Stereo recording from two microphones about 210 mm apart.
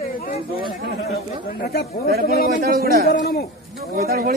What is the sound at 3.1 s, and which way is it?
Speech, 50° left (ahead or behind).